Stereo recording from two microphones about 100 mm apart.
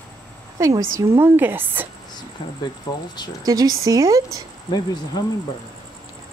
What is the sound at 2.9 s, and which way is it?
Speech, 45° left (ahead or behind).